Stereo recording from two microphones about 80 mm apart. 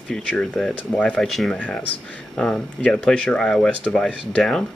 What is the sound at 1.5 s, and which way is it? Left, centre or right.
Speech, centre.